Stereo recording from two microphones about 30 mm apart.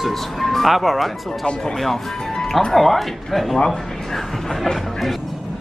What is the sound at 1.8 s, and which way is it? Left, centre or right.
Speech, centre.